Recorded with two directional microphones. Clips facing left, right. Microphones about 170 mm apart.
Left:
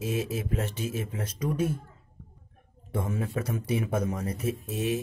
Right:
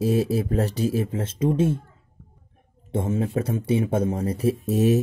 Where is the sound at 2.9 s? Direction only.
25° right (ahead or behind).